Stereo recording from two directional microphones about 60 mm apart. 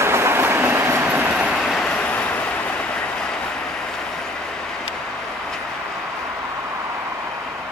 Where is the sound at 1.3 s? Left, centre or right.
Centre.